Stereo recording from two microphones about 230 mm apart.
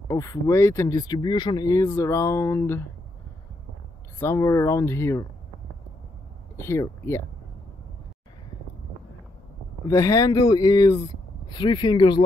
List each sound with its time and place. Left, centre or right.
0.1 s speech: centre
4.2 s speech: centre
6.5 s speech: centre
9.9 s speech: centre